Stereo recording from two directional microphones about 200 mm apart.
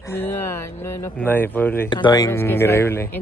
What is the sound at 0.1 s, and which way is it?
Speech, 10° left (ahead or behind).